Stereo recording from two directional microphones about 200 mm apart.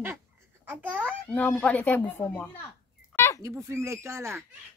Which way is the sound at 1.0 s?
5° left (ahead or behind).